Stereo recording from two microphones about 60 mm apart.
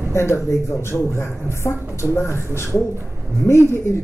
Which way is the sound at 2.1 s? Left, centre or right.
Left.